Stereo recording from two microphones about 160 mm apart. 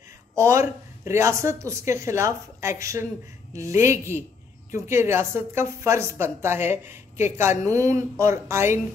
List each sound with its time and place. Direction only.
0.4 s a woman's voice: 15° right (ahead or behind)